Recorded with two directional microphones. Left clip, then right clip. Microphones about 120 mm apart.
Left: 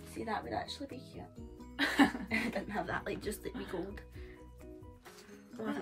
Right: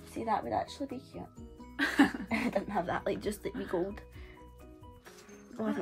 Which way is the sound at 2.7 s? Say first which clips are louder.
Right 5 dB; 35° right (ahead or behind).